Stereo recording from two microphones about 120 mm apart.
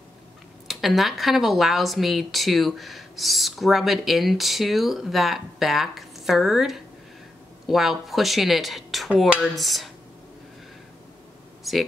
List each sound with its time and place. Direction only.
0.7 s speech: centre (ahead or behind)
11.7 s speech: centre (ahead or behind)